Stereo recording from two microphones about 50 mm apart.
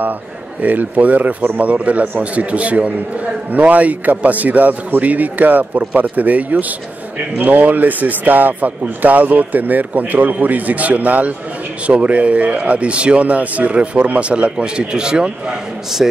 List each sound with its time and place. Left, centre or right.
0.6 s speech: right; by 16.1 s centre